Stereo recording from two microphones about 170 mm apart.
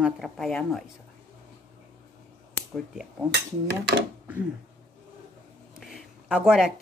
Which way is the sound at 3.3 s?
90° right.